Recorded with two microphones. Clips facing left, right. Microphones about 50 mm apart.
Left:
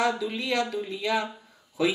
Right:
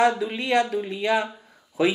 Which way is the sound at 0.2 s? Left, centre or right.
Right.